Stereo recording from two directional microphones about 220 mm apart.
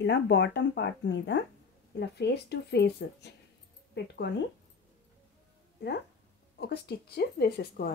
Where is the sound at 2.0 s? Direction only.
50° left (ahead or behind).